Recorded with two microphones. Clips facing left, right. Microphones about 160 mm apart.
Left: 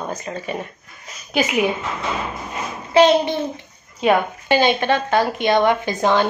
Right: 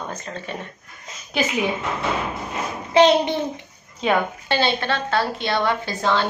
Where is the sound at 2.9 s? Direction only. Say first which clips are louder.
Left 1 dB; 15° right (ahead or behind).